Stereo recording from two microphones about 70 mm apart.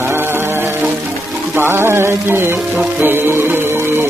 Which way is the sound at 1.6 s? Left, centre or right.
Right.